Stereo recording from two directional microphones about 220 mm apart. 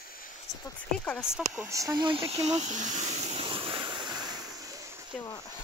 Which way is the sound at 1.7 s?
15° right (ahead or behind).